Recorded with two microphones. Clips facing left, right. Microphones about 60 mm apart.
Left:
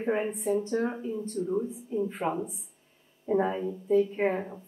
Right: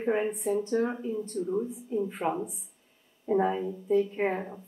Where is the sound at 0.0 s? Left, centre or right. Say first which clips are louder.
Right 1 dB; centre.